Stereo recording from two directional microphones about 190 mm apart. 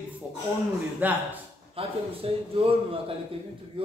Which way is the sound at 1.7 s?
30° right (ahead or behind).